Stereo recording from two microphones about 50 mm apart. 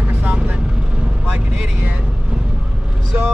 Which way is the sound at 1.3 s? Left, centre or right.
Right.